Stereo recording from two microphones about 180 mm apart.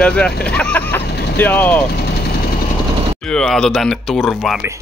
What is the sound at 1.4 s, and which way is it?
Speech, 10° left (ahead or behind).